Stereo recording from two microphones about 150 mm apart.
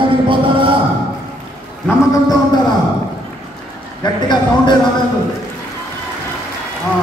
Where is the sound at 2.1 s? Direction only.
25° left (ahead or behind).